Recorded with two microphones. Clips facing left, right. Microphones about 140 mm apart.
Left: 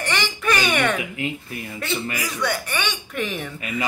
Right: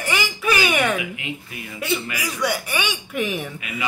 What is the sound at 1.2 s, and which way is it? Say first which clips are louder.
Speech: left 4 dB; 40° left (ahead or behind).